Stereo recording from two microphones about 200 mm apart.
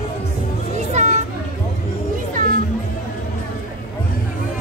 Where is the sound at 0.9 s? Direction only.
35° right (ahead or behind).